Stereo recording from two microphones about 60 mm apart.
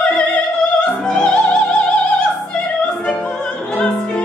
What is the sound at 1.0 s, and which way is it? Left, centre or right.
Music, centre.